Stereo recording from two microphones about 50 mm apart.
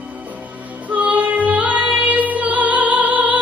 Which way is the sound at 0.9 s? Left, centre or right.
Right.